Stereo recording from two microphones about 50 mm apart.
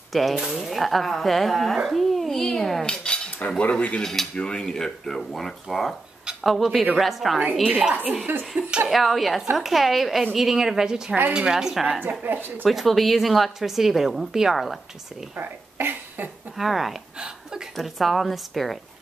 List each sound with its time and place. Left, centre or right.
0.1 s a woman's voice: centre
2.9 s cutlery: left
4.0 s a woman's voice: centre
8.5 s speech: centre
8.8 s a woman's voice: centre
12.0 s speech: right
12.6 s a woman's voice: centre
15.3 s speech: right
16.5 s a woman's voice: centre
17.7 s a woman's voice: centre